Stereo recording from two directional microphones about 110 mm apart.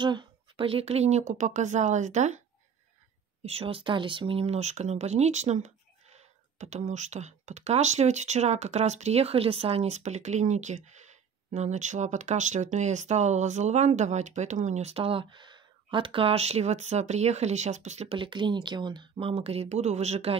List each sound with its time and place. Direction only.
0.0 s speech: 45° right (ahead or behind); by 2.4 s 90° right
3.4 s speech: 60° right (ahead or behind); by 18.1 s 85° right
18.1 s a woman's voice: 45° right (ahead or behind); by 20.3 s 80° right